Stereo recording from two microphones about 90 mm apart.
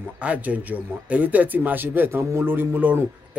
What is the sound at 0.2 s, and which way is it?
Speech, 15° right (ahead or behind).